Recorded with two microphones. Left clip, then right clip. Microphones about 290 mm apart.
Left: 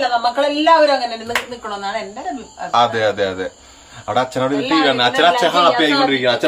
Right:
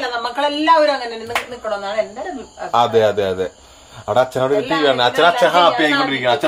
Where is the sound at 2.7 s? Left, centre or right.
Right.